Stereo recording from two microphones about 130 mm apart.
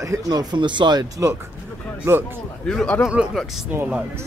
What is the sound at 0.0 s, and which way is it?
Speech, 25° right (ahead or behind).